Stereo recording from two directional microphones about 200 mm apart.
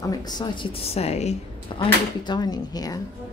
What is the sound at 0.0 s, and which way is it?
Speech, 20° left (ahead or behind).